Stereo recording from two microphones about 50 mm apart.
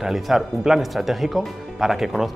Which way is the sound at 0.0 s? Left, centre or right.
Centre.